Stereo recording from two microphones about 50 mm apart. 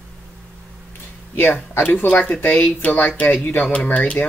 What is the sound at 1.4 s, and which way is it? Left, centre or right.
Speech, left.